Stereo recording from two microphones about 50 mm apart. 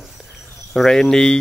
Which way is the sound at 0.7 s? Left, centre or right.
Centre.